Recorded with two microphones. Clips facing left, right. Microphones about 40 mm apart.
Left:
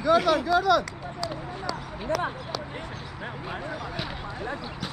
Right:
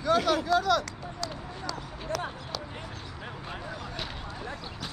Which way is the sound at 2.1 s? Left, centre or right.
Left.